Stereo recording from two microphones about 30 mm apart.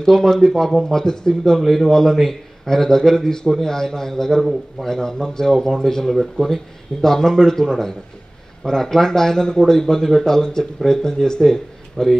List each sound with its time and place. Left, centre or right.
0.0 s speech: centre
1.6 s a man's voice: centre
1.9 s speech: centre